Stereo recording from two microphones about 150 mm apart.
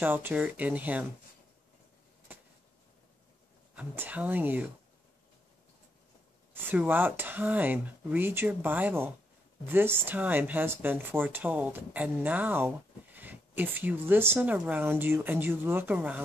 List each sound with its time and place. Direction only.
0.0 s speech: 10° right (ahead or behind)
3.7 s speech: 10° right (ahead or behind)
6.5 s speech: 10° right (ahead or behind)